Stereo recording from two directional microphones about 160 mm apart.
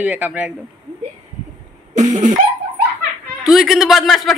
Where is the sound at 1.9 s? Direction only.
50° right (ahead or behind).